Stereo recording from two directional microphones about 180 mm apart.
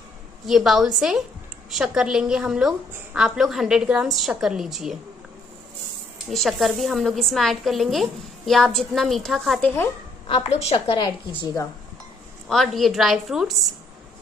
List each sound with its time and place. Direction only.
0.5 s a woman's voice: centre (ahead or behind)
6.3 s a woman's voice: centre (ahead or behind)
10.2 s a woman's voice: 30° left (ahead or behind)
12.4 s a woman's voice: centre (ahead or behind)